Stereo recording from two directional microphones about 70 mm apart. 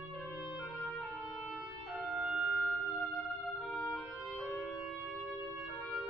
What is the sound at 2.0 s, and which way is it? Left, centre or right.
Music, centre.